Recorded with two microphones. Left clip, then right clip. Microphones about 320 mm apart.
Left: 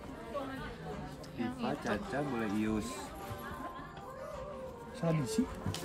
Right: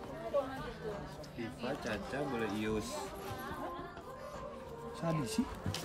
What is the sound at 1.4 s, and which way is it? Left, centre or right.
Speech, centre.